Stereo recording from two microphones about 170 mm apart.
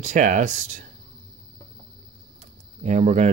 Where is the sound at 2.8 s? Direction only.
40° right (ahead or behind).